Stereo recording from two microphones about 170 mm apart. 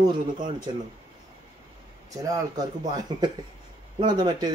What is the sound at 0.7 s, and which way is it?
Speech, 25° right (ahead or behind).